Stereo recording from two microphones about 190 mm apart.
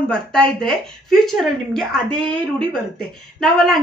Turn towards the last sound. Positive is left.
turn(degrees=5)  # may be behind; listen again after turning